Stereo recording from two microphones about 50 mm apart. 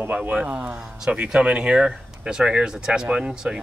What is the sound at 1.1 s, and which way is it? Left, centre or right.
Speech, right.